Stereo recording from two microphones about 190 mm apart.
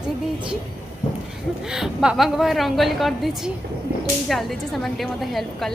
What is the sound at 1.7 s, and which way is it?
A woman's voice, 5° right (ahead or behind).